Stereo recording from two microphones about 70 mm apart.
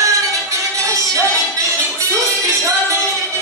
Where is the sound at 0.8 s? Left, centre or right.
Right.